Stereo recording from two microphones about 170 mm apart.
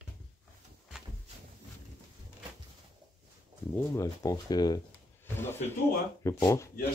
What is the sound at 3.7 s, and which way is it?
Speech, 15° left (ahead or behind).